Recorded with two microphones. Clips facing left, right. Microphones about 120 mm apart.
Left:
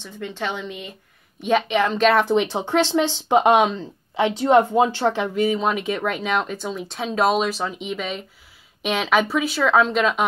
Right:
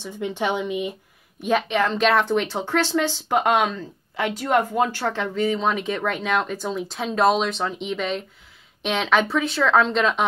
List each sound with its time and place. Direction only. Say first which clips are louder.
0.0 s speech: right 3 dB; 15° right (ahead or behind)
1.4 s speech: left 2 dB; centre (ahead or behind)
2.3 s speech: left 3 dB; 15° left (ahead or behind)